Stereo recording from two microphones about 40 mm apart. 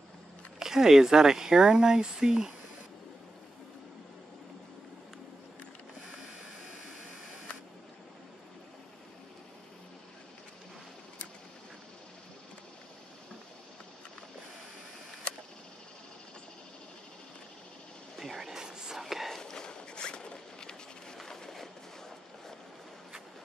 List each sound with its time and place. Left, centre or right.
0.6 s speech: centre
18.2 s a sound: centre
18.9 s a sound: centre
19.3 s walk: centre
19.6 s zipper: left
21.3 s train: centre